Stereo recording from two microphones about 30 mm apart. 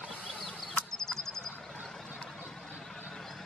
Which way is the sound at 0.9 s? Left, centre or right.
Centre.